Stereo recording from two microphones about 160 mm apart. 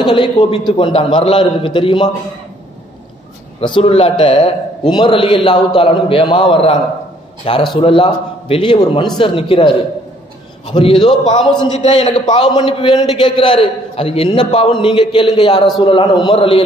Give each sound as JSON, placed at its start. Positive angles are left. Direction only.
{"t": 0.0, "sound": "a man's voice", "side_deg": 30}
{"t": 3.6, "sound": "a man's voice", "side_deg": 35}
{"t": 10.7, "sound": "a man's voice", "side_deg": 30}
{"t": 11.8, "sound": "a man's voice", "side_deg": 45}
{"t": 12.3, "sound": "a man's voice", "side_deg": 30}